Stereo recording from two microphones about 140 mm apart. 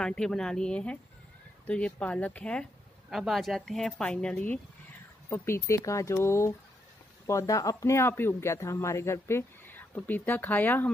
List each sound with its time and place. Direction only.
0.0 s speech: 5° left (ahead or behind)
3.1 s speech: centre (ahead or behind)